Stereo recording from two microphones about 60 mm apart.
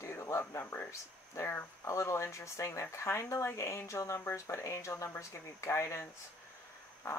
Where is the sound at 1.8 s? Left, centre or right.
Left.